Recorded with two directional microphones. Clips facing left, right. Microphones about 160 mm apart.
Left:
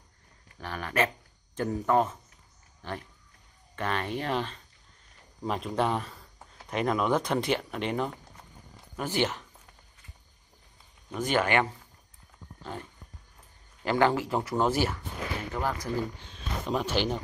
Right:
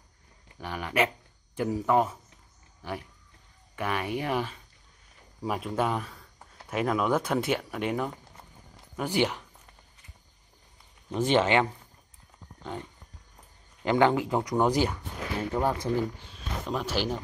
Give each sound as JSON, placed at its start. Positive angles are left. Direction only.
{"t": 0.5, "sound": "speech", "side_deg": -15}
{"t": 11.1, "sound": "speech", "side_deg": -25}
{"t": 13.8, "sound": "speech", "side_deg": -20}
{"t": 16.2, "sound": "speech", "side_deg": -5}